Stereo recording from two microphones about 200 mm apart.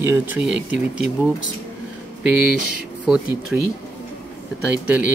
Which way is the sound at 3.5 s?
5° right (ahead or behind).